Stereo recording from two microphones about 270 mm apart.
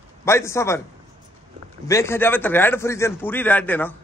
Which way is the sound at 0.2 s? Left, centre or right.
Centre.